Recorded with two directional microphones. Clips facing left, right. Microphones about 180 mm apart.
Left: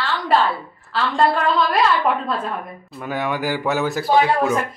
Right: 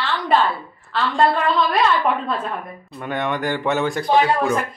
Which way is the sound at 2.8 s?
5° left (ahead or behind).